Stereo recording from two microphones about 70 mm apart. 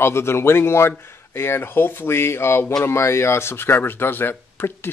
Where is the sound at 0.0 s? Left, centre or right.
Left.